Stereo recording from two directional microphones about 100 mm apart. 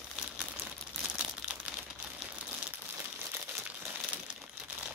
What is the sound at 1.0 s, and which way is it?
Crumpling, 15° right (ahead or behind).